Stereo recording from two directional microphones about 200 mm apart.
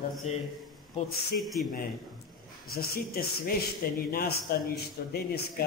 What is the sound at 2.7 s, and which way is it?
Speech, 50° left (ahead or behind).